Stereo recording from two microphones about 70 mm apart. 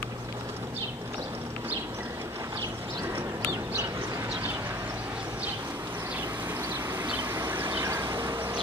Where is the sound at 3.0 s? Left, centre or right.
Right.